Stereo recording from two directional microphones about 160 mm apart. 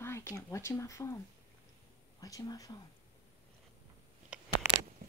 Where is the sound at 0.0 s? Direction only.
15° left (ahead or behind).